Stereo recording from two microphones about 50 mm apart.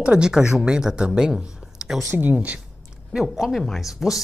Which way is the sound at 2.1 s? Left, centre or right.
Right.